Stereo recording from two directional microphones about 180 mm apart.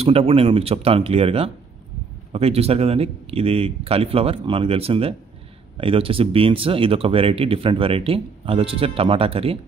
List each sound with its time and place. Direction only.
0.0 s speech: 35° right (ahead or behind)